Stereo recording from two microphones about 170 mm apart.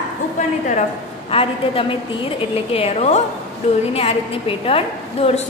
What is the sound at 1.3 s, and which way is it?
A woman's voice, 35° left (ahead or behind).